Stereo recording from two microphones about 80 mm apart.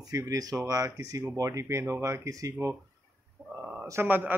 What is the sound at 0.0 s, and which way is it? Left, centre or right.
Speech, right.